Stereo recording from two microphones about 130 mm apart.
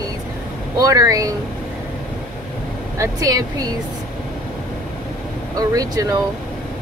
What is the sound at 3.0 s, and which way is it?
Speech, 25° right (ahead or behind).